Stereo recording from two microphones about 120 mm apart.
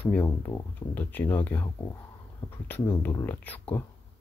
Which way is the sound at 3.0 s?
20° left (ahead or behind).